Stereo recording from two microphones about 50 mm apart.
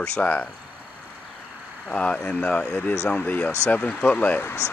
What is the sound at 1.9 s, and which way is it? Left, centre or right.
Speech, left.